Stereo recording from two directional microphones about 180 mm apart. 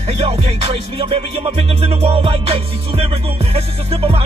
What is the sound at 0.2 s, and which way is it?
Music, 35° right (ahead or behind).